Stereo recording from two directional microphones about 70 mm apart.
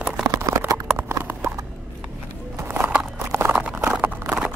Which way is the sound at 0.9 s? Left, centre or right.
Right.